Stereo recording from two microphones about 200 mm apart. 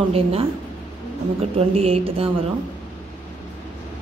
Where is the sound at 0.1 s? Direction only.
30° right (ahead or behind).